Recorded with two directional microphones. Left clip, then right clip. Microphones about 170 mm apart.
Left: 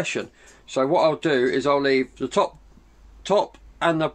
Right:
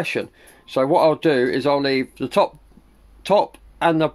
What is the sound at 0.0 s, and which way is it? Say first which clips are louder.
Speech: right 3 dB; 30° right (ahead or behind).